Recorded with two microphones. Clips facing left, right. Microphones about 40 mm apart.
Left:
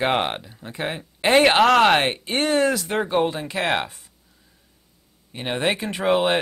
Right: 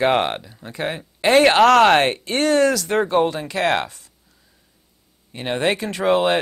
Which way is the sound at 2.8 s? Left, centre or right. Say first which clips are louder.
Right 3 dB; centre.